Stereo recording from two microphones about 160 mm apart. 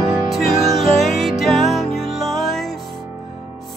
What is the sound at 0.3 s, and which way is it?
Music, centre (ahead or behind).